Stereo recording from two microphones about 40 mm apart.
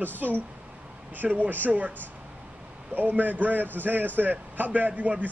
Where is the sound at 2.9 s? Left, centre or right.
Right.